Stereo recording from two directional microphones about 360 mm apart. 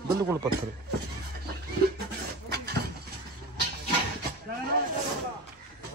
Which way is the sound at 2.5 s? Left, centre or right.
Right.